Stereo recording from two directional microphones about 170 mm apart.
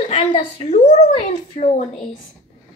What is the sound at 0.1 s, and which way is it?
A woman's voice, 40° left (ahead or behind).